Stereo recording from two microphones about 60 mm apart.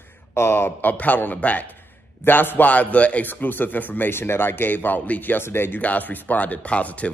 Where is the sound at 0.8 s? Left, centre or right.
Left.